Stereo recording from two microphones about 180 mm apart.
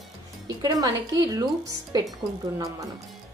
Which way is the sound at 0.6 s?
20° right (ahead or behind).